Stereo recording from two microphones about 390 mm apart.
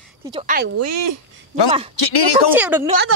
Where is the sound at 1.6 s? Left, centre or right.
Centre.